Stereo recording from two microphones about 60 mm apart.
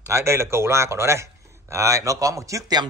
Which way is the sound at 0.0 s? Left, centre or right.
Right.